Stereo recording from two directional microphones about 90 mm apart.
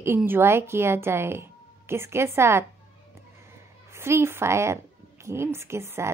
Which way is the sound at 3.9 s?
30° right (ahead or behind).